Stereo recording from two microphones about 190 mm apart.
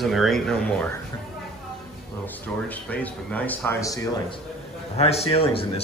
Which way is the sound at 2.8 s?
10° left (ahead or behind).